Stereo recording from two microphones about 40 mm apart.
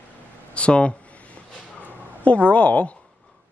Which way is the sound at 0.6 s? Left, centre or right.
Left.